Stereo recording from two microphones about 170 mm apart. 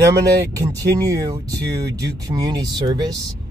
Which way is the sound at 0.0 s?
20° right (ahead or behind).